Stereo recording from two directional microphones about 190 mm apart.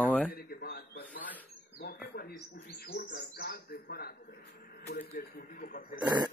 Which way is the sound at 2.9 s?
60° left (ahead or behind).